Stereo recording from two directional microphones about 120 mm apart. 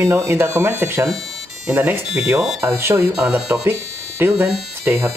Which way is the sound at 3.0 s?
5° right (ahead or behind).